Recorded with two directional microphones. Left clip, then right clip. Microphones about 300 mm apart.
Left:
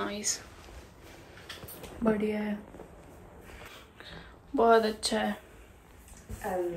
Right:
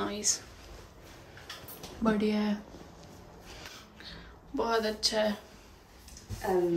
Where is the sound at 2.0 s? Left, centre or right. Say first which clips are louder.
Even; centre.